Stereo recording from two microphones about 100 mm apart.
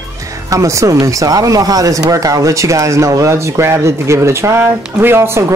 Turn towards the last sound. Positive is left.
turn(degrees=-25)  # may be behind; listen again after turning